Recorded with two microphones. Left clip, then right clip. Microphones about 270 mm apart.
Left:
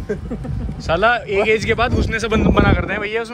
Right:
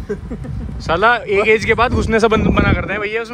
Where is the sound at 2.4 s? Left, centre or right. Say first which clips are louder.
Even; centre.